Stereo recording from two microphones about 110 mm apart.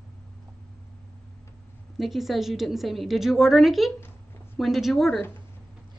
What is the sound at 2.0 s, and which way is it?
A woman's voice, centre (ahead or behind).